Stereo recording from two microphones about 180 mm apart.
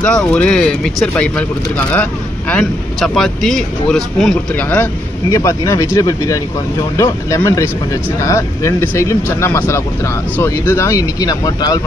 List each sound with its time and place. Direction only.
0.0 s speech: 5° left (ahead or behind)
2.5 s speech: centre (ahead or behind); by 11.8 s 20° left (ahead or behind)